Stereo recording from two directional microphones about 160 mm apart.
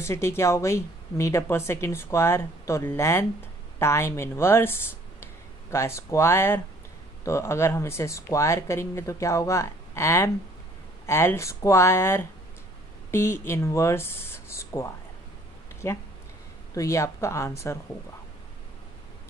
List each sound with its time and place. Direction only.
0.0 s a woman's voice: 15° left (ahead or behind)